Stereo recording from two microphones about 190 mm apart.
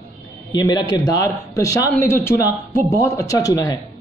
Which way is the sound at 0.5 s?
25° left (ahead or behind).